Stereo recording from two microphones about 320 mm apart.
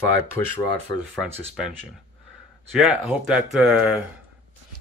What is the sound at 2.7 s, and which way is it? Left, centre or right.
Speech, centre.